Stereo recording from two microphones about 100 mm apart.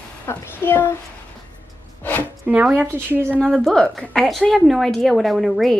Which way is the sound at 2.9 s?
20° right (ahead or behind).